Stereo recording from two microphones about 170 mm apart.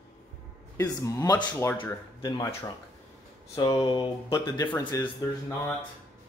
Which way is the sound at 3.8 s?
25° left (ahead or behind).